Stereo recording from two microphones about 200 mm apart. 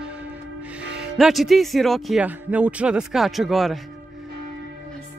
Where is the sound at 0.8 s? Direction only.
5° right (ahead or behind).